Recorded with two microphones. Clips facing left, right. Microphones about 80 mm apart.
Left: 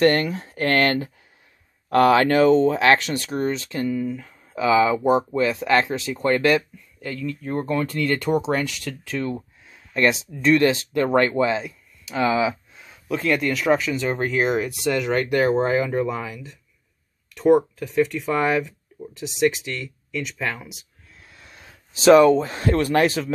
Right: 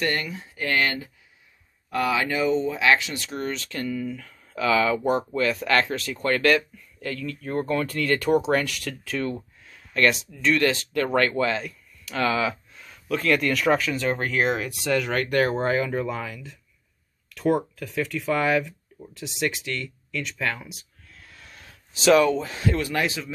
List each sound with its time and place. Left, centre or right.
0.0 s speech: left
3.4 s speech: left
7.0 s speech: centre
9.7 s speech: centre
21.1 s a sound: left
21.9 s speech: left